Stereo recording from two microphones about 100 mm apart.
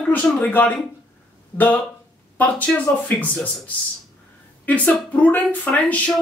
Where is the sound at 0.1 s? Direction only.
15° left (ahead or behind).